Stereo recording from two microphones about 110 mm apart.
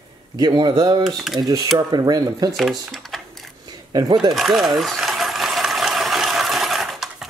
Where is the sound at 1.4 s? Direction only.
35° right (ahead or behind).